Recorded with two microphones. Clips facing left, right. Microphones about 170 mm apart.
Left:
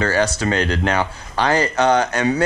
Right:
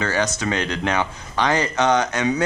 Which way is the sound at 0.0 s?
35° left (ahead or behind).